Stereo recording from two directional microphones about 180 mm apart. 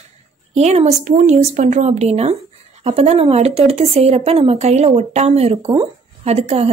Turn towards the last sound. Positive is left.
turn(degrees=-35)  # may be behind; listen again after turning